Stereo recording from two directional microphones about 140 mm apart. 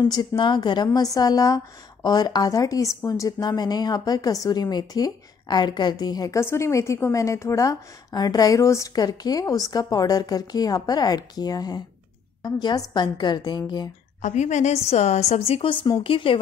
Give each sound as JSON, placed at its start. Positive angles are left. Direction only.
{"t": 0.0, "sound": "a woman's voice", "side_deg": 30}
{"t": 14.2, "sound": "a woman's voice", "side_deg": 55}